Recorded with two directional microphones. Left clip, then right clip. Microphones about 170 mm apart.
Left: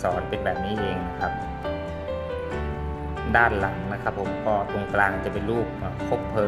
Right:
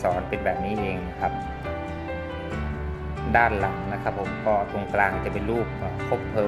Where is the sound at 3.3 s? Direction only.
40° left (ahead or behind).